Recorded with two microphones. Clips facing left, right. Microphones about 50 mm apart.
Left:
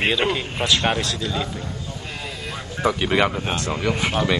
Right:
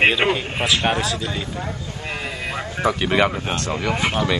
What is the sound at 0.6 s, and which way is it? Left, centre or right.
Speech, centre.